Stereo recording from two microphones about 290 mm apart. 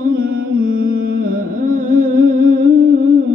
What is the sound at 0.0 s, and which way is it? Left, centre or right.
Carnatic music, right.